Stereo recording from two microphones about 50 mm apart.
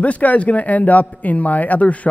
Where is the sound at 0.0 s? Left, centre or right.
Left.